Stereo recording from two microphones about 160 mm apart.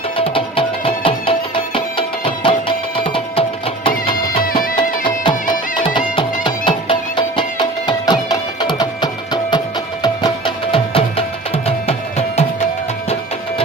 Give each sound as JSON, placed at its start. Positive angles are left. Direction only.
{"t": 0.2, "sound": "music", "side_deg": 35}